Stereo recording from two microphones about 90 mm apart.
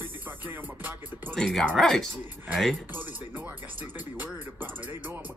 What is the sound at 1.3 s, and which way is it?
Speech, 5° left (ahead or behind).